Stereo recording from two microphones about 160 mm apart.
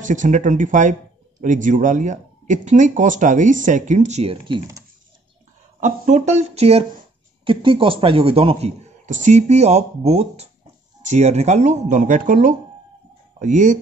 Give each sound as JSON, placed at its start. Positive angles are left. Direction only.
{"t": 0.0, "sound": "speech", "side_deg": -50}
{"t": 5.8, "sound": "a man's voice", "side_deg": -55}